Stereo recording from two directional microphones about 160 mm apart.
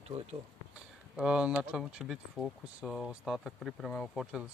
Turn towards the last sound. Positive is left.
turn(degrees=0)  # may be behind; listen again after turning